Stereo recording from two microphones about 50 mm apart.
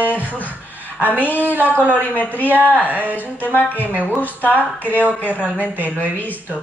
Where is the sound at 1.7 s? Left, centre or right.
Left.